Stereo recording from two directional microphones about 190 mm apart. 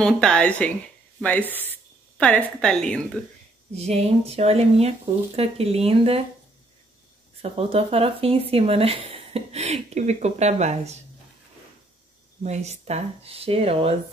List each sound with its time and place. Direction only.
0.0 s speech: 5° left (ahead or behind)
3.7 s speech: 35° right (ahead or behind)
7.4 s speech: 30° right (ahead or behind)
12.4 s speech: 35° right (ahead or behind)